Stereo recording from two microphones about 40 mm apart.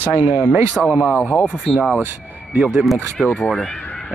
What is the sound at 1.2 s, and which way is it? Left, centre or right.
Speech, left.